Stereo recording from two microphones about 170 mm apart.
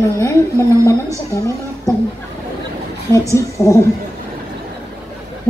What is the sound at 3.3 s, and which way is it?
Speech, 20° left (ahead or behind).